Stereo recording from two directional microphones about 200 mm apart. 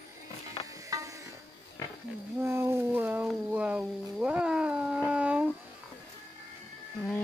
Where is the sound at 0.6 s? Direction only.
15° right (ahead or behind).